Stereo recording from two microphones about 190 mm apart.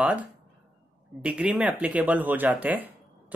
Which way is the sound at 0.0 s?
5° right (ahead or behind).